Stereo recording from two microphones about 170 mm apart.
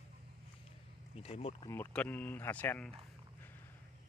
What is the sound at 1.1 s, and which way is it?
Speech, 35° left (ahead or behind).